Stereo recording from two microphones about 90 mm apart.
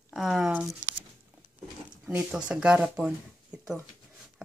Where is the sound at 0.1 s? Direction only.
5° right (ahead or behind).